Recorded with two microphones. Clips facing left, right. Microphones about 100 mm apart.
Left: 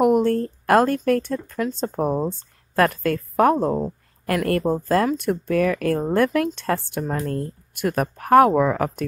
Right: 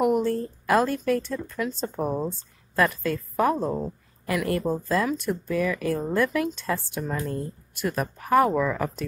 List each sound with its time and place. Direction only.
0.0 s speech: 55° left (ahead or behind)